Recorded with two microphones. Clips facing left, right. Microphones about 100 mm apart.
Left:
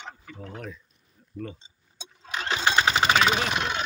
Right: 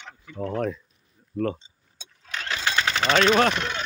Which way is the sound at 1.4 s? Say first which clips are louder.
Right 10 dB; 60° right (ahead or behind).